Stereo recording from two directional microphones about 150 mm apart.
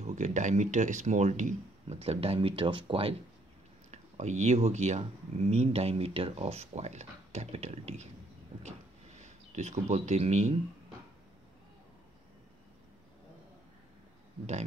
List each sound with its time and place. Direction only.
0.0 s speech: 55° right (ahead or behind); by 3.2 s 40° right (ahead or behind)
3.9 s speech: 50° right (ahead or behind)
9.2 s speech: 50° right (ahead or behind)